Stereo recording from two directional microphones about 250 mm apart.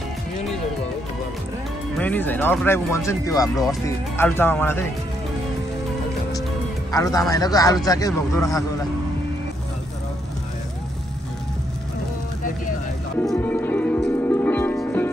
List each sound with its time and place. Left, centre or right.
2.0 s speech: centre
6.9 s speech: centre
13.2 s music: centre